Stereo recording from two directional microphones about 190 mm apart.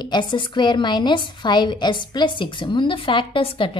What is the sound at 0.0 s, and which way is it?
A woman's voice, 25° left (ahead or behind).